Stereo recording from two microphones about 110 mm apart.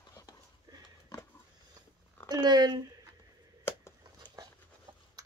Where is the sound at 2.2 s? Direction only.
40° right (ahead or behind).